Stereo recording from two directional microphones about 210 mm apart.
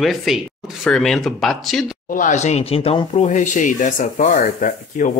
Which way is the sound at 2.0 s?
40° left (ahead or behind).